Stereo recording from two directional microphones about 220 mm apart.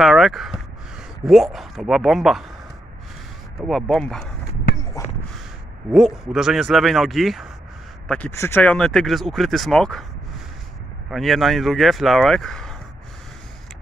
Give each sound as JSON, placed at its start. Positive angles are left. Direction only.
{"t": 0.0, "sound": "speech", "side_deg": 0}
{"t": 3.6, "sound": "speech", "side_deg": 0}
{"t": 5.0, "sound": "a sound", "side_deg": 15}
{"t": 5.9, "sound": "speech", "side_deg": 0}
{"t": 11.1, "sound": "speech", "side_deg": 0}